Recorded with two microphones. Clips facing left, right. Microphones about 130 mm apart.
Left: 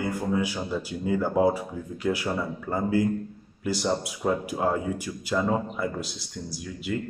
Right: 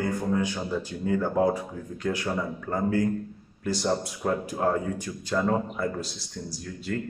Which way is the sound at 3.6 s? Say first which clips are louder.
Even; 5° left (ahead or behind).